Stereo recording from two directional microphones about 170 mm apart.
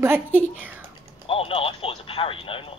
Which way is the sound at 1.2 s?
35° left (ahead or behind).